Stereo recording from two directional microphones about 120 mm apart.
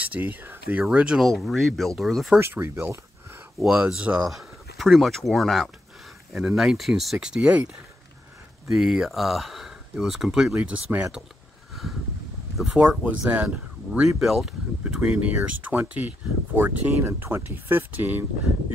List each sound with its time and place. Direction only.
0.0 s speech: 15° right (ahead or behind)
0.8 s speech: 5° right (ahead or behind)
2.3 s speech: 20° right (ahead or behind)
3.6 s speech: 10° right (ahead or behind)
12.5 s speech: 5° right (ahead or behind)